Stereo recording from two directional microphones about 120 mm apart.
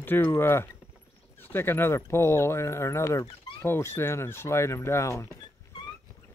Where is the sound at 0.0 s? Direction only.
15° left (ahead or behind).